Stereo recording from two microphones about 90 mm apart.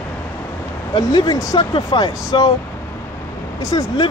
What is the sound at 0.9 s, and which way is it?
Speech, 55° left (ahead or behind).